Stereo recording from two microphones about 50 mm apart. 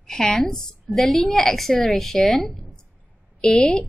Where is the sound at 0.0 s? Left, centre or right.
Centre.